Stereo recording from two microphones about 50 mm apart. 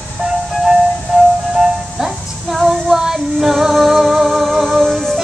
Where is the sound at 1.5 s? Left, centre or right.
Centre.